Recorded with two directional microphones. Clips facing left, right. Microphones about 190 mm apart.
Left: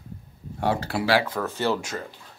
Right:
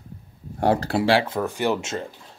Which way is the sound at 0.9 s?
25° right (ahead or behind).